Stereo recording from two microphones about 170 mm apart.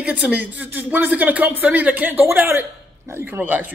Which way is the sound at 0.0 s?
10° right (ahead or behind).